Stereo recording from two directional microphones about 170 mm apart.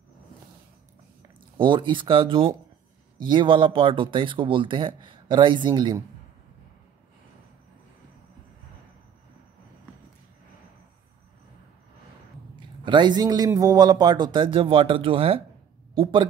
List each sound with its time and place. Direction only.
1.6 s a man's voice: 30° right (ahead or behind)
12.5 s a man's voice: 25° right (ahead or behind)